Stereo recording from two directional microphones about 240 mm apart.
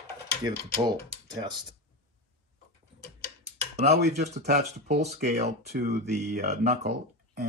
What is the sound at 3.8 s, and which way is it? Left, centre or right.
Speech, right.